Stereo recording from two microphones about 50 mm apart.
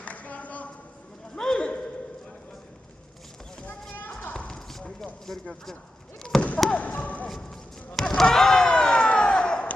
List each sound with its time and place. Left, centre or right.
0.0 s a sound: left
1.3 s a sound: centre
5.2 s speech: centre
6.3 s basketball bounce: centre
6.7 s basketball bounce: left
7.4 s basketball bounce: centre